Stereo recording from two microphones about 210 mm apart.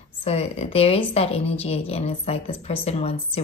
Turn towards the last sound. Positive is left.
turn(degrees=30)  # may be behind; listen again after turning